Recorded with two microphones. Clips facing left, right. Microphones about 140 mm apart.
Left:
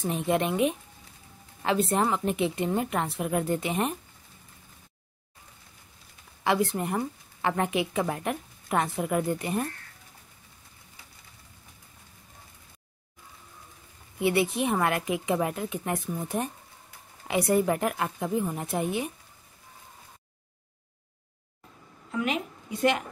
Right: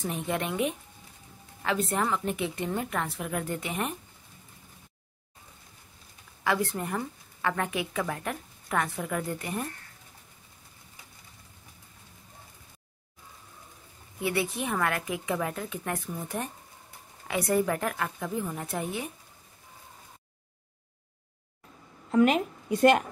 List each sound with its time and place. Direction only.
0.1 s a woman's voice: 20° left (ahead or behind)
6.4 s a woman's voice: 20° left (ahead or behind)
14.2 s a woman's voice: 20° left (ahead or behind)
22.1 s a woman's voice: 40° right (ahead or behind)